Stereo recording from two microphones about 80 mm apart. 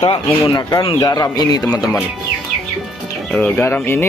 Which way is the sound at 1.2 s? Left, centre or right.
Left.